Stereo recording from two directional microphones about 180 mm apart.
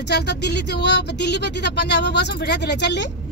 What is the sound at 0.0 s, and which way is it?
Speech, 70° left (ahead or behind).